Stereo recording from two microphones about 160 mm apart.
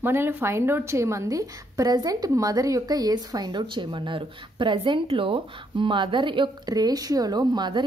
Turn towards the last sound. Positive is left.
turn(degrees=-25)  # may be behind; listen again after turning